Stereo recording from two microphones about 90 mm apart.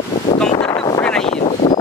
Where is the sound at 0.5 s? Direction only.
80° left.